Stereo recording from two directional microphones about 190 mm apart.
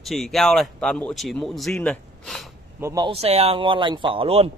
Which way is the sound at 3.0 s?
30° right (ahead or behind).